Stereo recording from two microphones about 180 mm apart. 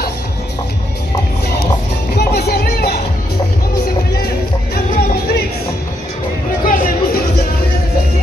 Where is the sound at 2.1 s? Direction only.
60° left (ahead or behind).